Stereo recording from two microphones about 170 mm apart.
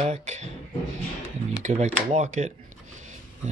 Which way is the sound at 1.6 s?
45° right (ahead or behind).